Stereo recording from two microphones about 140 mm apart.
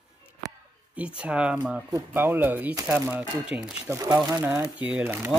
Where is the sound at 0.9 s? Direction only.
10° right (ahead or behind).